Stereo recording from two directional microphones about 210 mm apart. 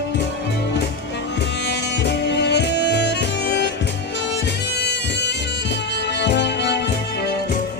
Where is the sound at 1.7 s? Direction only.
55° left (ahead or behind).